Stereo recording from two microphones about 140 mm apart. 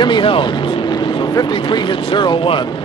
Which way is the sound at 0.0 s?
35° left (ahead or behind).